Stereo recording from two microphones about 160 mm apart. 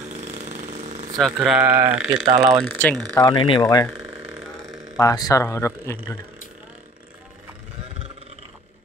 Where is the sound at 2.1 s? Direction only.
40° right (ahead or behind).